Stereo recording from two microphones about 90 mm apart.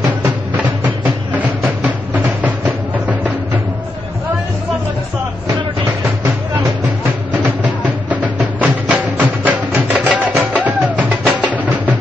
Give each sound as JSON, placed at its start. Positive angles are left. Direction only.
{"t": 0.8, "sound": "music", "side_deg": -20}
{"t": 7.3, "sound": "music", "side_deg": -15}